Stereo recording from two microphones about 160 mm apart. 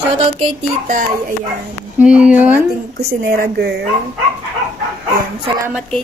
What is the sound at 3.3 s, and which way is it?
Speech, 85° right.